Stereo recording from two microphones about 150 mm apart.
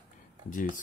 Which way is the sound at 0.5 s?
60° left (ahead or behind).